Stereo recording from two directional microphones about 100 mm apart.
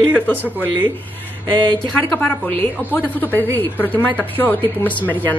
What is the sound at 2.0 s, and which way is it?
A woman's voice, 15° left (ahead or behind).